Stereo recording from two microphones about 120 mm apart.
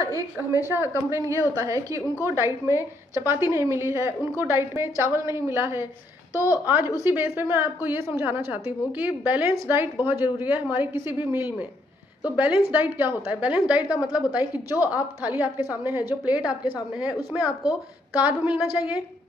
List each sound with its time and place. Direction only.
0.5 s a woman's voice: 20° right (ahead or behind)
6.3 s a woman's voice: 25° left (ahead or behind)
6.6 s a woman's voice: 20° right (ahead or behind)
17.6 s a woman's voice: 15° right (ahead or behind)